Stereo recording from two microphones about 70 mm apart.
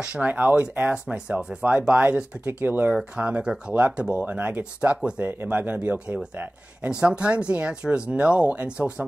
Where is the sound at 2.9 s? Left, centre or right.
Centre.